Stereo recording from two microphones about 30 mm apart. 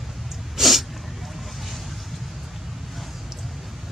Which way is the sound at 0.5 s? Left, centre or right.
Centre.